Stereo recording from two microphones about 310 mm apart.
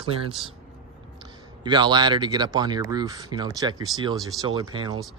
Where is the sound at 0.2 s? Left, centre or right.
Centre.